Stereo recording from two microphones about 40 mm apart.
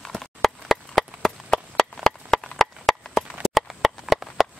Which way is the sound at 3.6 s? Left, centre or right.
Centre.